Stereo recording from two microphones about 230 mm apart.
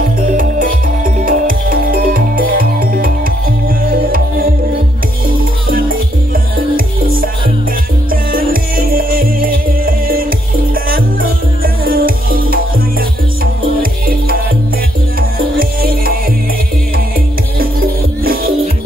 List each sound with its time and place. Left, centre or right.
0.4 s music: right
5.7 s music: right
8.1 s music: right
14.0 s music: right
15.8 s music: right
17.6 s music: right